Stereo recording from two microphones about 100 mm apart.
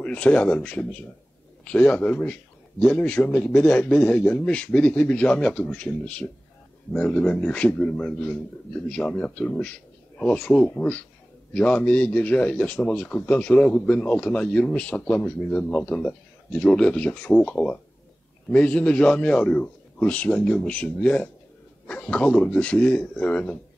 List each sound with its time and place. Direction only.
0.0 s a man's voice: 10° left (ahead or behind)